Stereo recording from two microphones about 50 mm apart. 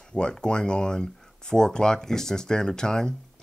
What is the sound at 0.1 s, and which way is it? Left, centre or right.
Speech, centre.